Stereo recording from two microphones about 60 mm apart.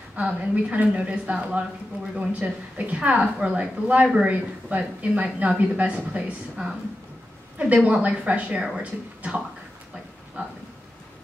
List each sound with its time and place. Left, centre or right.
0.1 s a woman's voice: centre